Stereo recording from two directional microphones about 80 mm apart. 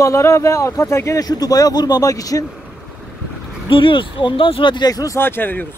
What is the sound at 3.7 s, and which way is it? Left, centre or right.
Speech, left.